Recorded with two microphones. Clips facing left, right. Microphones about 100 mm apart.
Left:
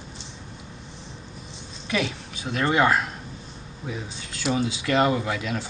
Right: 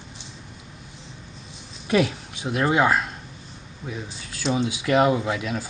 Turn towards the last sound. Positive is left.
turn(degrees=0)  # may be behind; listen again after turning